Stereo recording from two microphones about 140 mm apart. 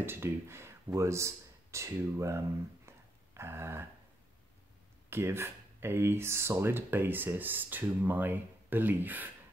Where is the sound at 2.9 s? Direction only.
20° right (ahead or behind).